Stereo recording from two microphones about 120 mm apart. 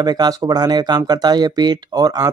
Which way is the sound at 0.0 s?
35° right (ahead or behind).